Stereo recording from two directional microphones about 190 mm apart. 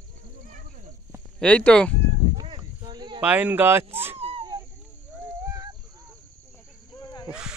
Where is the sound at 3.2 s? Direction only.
10° right (ahead or behind).